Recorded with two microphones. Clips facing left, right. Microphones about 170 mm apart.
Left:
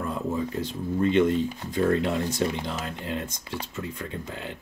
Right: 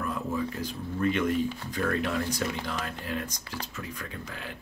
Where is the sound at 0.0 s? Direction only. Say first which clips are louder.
Left 2 dB; 25° left (ahead or behind).